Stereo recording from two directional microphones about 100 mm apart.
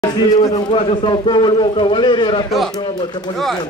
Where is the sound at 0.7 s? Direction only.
55° left (ahead or behind).